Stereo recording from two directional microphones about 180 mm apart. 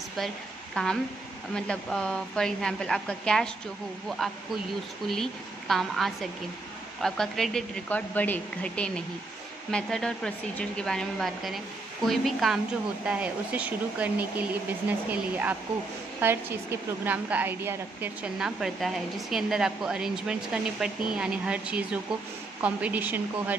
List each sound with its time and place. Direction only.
0.8 s a woman's voice: 5° left (ahead or behind)